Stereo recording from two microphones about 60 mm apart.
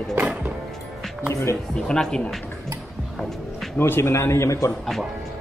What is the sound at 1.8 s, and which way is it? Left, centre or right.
Speech, centre.